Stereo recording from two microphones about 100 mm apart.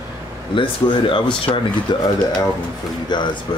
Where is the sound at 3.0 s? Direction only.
50° left (ahead or behind).